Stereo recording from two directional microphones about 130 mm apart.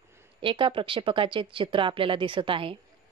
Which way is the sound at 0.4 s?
40° right (ahead or behind).